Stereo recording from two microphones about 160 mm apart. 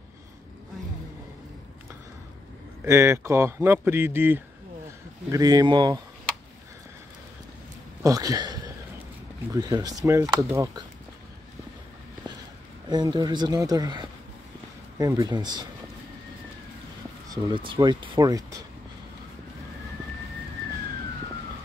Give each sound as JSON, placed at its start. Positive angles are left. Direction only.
{"t": 2.8, "sound": "speech", "side_deg": -15}
{"t": 8.0, "sound": "speech", "side_deg": -20}
{"t": 12.8, "sound": "speech", "side_deg": -25}
{"t": 17.3, "sound": "speech", "side_deg": -30}